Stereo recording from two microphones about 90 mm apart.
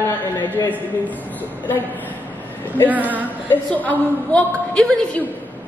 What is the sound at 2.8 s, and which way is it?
Speech, 20° right (ahead or behind).